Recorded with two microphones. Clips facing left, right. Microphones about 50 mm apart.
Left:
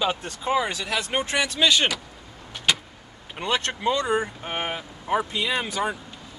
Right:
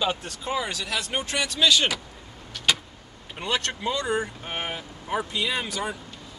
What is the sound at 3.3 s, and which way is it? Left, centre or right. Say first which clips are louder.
Speech: left 2 dB; centre.